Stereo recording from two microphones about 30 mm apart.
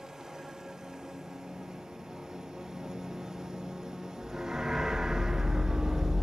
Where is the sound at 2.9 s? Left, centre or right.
Centre.